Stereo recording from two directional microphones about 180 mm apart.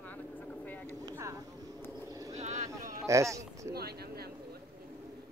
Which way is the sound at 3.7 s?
60° right (ahead or behind).